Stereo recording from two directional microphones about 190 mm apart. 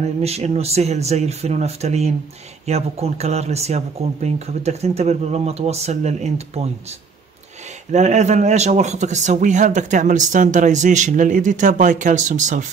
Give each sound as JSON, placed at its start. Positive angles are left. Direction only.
{"t": 0.0, "sound": "speech", "side_deg": -35}